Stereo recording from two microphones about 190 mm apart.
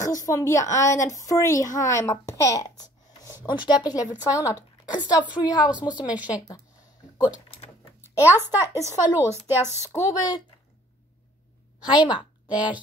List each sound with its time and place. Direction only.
0.0 s a woman's voice: 15° left (ahead or behind)
6.0 s speech: 5° right (ahead or behind)
8.2 s speech: 10° right (ahead or behind)
9.9 s speech: 20° left (ahead or behind)
12.4 s speech: 5° right (ahead or behind)